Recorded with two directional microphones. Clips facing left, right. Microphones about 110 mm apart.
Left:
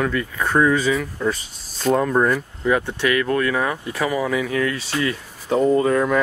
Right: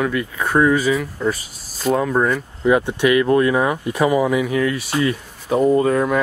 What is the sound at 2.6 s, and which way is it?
Speech, 15° right (ahead or behind).